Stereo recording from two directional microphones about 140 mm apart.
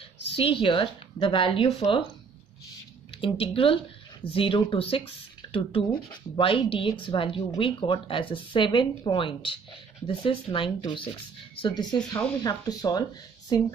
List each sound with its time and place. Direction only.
0.4 s speech: 40° left (ahead or behind)
3.2 s speech: 40° left (ahead or behind)